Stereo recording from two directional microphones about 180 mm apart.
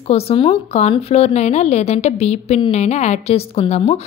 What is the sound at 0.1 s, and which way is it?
A woman's voice, 35° left (ahead or behind).